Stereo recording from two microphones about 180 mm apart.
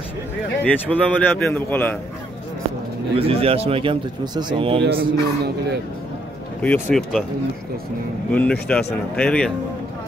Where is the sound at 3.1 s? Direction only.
30° right (ahead or behind).